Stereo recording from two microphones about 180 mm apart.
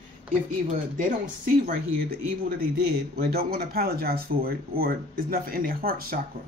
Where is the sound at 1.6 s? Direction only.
55° right (ahead or behind).